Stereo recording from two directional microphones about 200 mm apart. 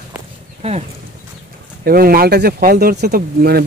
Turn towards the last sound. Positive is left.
turn(degrees=-50)  # may be behind; listen again after turning